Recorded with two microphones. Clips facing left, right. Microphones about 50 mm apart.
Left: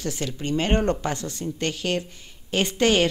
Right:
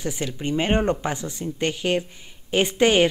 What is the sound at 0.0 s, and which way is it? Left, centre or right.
Speech, centre.